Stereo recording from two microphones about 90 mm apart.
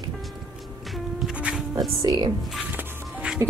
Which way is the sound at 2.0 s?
40° right (ahead or behind).